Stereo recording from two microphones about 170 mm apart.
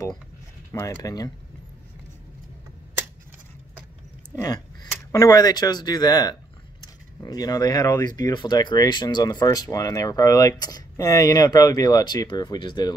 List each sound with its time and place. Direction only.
0.7 s speech: 15° left (ahead or behind)
5.1 s speech: 20° left (ahead or behind)